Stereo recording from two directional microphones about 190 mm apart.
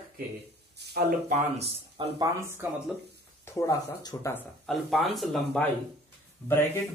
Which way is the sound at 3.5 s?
15° left (ahead or behind).